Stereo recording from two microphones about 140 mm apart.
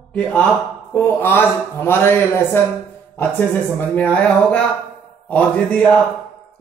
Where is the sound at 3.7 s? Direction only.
10° left (ahead or behind).